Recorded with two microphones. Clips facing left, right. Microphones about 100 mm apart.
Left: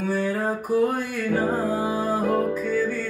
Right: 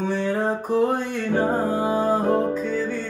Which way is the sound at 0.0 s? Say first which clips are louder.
Right 1 dB; 25° right (ahead or behind).